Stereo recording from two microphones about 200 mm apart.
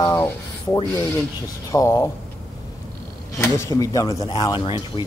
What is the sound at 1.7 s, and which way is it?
Speech, 15° left (ahead or behind).